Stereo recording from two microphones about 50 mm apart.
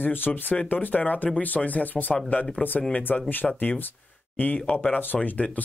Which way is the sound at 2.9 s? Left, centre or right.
Left.